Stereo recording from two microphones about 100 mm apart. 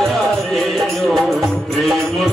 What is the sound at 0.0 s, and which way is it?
Music, centre (ahead or behind).